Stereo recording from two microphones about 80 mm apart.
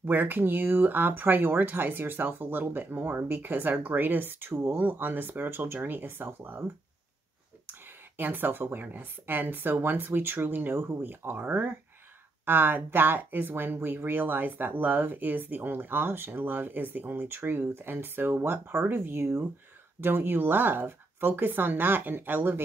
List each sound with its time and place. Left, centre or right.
0.0 s speech: right
8.2 s speech: right